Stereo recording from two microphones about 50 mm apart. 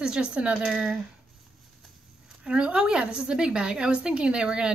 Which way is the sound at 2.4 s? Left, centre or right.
Right.